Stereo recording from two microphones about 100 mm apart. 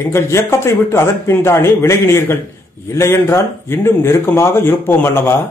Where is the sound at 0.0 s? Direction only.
25° left (ahead or behind).